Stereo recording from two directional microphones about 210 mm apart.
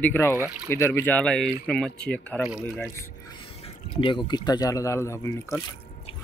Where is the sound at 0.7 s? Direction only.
10° left (ahead or behind).